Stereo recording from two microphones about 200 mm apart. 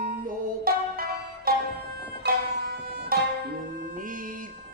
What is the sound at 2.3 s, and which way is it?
Music, 45° right (ahead or behind).